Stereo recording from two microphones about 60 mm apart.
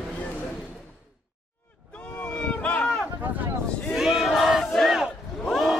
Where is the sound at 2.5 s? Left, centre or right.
Left.